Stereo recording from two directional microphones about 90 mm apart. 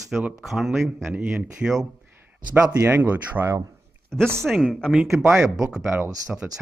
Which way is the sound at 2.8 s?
25° right (ahead or behind).